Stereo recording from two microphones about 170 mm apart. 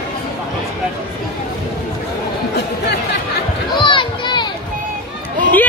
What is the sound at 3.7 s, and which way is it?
Children playing, 30° left (ahead or behind).